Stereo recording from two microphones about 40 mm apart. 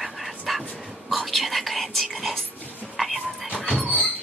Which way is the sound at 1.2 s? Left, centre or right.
Centre.